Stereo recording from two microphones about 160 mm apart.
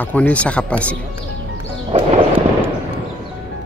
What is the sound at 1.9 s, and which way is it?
Music, 40° right (ahead or behind).